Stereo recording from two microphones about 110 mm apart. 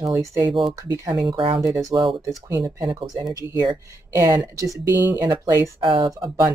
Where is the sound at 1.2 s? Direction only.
45° right (ahead or behind).